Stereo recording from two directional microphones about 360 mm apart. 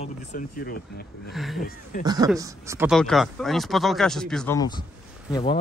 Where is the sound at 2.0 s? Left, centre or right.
Centre.